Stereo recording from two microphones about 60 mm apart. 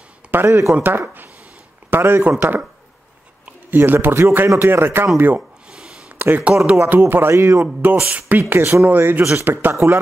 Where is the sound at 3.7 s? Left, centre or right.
Right.